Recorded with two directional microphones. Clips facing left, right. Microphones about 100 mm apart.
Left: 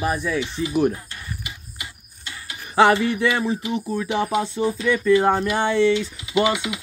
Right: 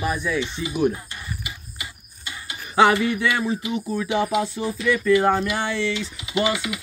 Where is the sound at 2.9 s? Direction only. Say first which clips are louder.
Left 2 dB; 30° left (ahead or behind).